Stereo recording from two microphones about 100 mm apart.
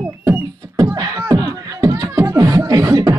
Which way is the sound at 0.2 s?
30° right (ahead or behind).